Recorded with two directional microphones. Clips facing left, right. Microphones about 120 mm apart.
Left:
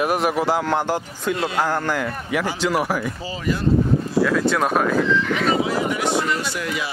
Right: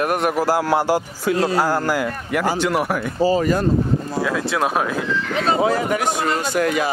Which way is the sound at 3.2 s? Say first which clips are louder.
Right 8 dB; 45° right (ahead or behind).